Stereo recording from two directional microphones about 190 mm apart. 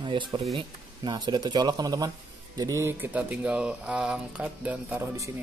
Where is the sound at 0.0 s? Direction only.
25° right (ahead or behind).